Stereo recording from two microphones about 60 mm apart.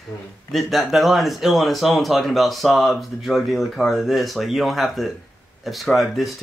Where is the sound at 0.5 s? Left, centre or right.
Centre.